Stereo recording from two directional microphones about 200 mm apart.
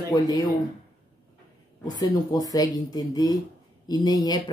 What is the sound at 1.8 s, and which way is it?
Speech, 20° left (ahead or behind).